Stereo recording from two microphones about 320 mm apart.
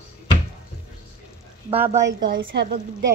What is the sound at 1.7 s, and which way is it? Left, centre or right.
Speech, centre.